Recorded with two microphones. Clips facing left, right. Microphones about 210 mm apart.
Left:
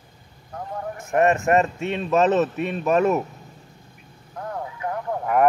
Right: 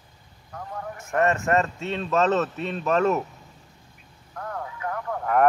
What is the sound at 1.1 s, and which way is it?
A man's voice, 15° left (ahead or behind).